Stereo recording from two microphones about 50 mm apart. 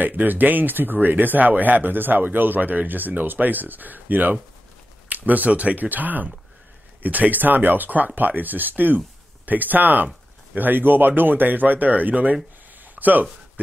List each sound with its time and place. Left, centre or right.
0.0 s speech: right